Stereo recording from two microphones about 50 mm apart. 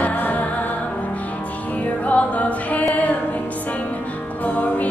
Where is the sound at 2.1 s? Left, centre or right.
Left.